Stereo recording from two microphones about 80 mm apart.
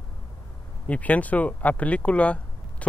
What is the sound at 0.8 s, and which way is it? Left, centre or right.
Speech, centre.